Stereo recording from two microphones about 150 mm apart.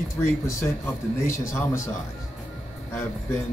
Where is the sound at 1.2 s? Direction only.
20° left (ahead or behind).